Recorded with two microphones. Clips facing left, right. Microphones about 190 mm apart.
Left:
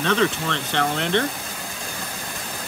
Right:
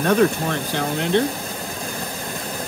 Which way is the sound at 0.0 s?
10° right (ahead or behind).